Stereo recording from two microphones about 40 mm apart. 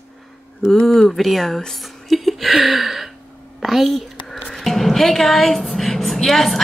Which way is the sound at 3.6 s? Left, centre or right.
Centre.